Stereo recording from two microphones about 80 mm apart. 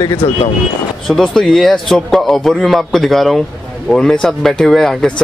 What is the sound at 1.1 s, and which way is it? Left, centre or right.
A man's voice, centre.